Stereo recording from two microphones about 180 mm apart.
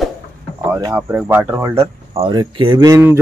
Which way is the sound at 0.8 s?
15° right (ahead or behind).